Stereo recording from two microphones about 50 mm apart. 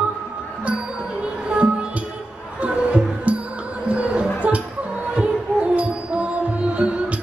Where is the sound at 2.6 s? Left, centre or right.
Right.